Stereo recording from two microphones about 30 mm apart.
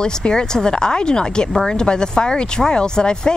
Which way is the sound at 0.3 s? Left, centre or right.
Left.